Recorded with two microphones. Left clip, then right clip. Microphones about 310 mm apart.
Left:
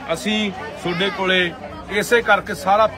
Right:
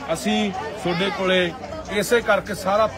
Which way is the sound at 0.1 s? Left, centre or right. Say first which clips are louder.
Left 1 dB; centre.